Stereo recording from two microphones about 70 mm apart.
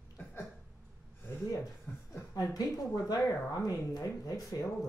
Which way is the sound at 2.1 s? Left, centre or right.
Left.